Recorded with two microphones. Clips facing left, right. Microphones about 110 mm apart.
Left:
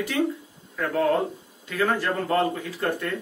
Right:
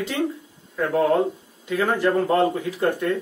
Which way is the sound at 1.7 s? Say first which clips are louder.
Right 4 dB; 20° right (ahead or behind).